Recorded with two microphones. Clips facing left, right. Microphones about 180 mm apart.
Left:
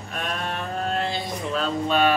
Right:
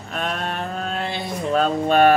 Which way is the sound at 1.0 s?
55° right (ahead or behind).